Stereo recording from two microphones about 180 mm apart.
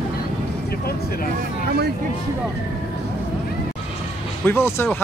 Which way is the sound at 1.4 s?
60° right (ahead or behind).